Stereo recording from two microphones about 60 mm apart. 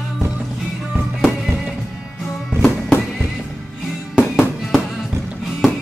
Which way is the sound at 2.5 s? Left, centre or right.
Centre.